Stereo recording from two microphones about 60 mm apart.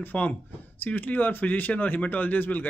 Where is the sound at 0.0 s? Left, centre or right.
Left.